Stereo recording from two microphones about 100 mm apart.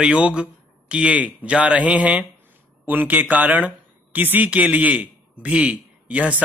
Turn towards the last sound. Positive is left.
turn(degrees=-15)  # may be behind; listen again after turning